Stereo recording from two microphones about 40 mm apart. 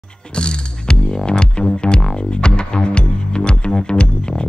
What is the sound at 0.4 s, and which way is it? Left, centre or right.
Music, left.